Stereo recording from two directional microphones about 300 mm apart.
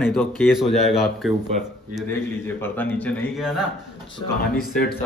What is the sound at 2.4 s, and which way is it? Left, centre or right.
Speech, centre.